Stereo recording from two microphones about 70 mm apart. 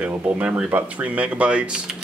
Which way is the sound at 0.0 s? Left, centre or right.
Right.